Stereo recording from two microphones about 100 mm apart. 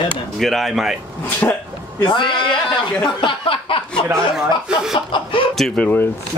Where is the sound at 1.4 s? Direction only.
20° left (ahead or behind).